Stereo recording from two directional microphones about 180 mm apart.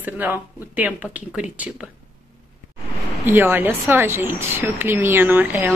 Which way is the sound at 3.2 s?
10° right (ahead or behind).